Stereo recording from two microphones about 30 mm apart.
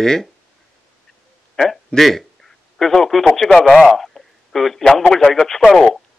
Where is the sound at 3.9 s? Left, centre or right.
Centre.